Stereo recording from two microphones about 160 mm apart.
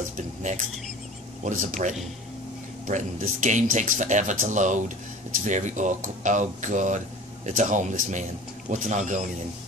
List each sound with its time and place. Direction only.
0.2 s dishes: 50° right (ahead or behind)
1.4 s speech: 55° right (ahead or behind)